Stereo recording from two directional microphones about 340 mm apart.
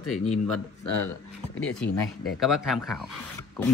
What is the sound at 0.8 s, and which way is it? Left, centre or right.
Speech, left.